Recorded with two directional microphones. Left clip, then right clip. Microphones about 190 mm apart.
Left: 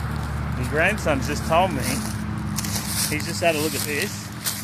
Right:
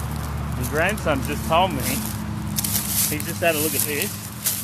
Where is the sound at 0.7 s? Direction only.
5° left (ahead or behind).